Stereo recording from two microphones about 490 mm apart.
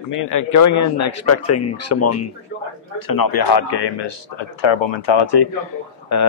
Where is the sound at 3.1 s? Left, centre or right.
Left.